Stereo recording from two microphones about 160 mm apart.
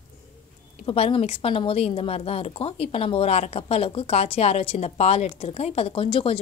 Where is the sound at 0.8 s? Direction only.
35° left (ahead or behind).